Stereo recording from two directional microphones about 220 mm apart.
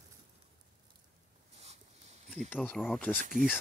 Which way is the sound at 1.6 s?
30° right (ahead or behind).